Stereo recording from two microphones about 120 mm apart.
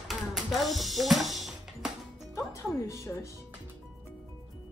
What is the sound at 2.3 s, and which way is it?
Music, 25° left (ahead or behind).